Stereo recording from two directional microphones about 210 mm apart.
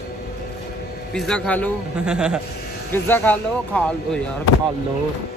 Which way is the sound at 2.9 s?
10° left (ahead or behind).